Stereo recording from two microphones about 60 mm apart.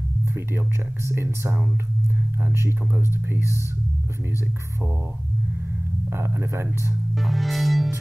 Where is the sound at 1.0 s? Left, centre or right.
Right.